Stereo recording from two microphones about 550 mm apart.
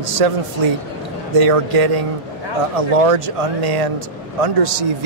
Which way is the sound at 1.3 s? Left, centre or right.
Right.